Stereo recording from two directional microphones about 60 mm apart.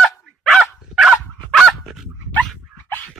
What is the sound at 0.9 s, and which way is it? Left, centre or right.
Dog, centre.